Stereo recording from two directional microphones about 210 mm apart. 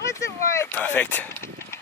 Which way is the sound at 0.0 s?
15° left (ahead or behind).